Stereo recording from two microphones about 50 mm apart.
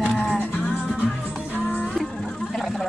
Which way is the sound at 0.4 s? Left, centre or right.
Left.